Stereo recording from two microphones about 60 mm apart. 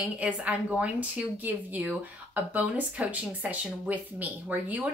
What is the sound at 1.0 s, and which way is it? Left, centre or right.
A woman's voice, right.